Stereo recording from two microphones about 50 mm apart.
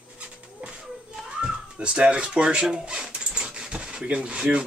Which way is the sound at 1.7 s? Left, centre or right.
Centre.